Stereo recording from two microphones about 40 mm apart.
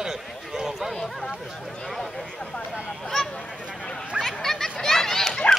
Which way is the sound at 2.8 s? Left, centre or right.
Centre.